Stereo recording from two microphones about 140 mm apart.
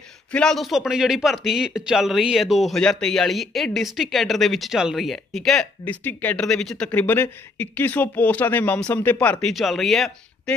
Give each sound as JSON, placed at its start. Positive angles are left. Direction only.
{"t": 0.3, "sound": "a man's voice", "side_deg": 5}
{"t": 9.5, "sound": "a man's voice", "side_deg": 0}